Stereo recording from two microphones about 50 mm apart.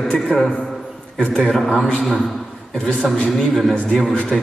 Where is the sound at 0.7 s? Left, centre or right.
Centre.